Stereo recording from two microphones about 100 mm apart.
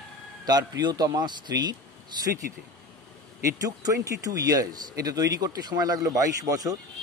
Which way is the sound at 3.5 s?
35° right (ahead or behind).